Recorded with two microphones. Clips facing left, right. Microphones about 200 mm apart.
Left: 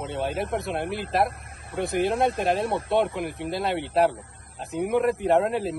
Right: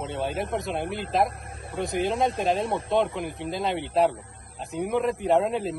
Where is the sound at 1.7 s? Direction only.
60° left (ahead or behind).